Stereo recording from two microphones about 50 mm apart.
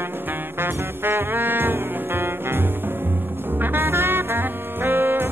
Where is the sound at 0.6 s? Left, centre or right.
Right.